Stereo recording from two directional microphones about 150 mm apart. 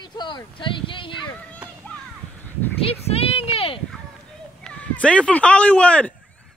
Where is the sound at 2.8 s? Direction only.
40° left (ahead or behind).